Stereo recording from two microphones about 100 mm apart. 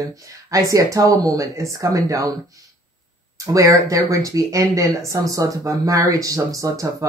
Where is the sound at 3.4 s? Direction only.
35° right (ahead or behind).